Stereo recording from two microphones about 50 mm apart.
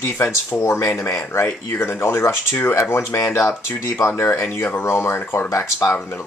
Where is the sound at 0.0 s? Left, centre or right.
Left.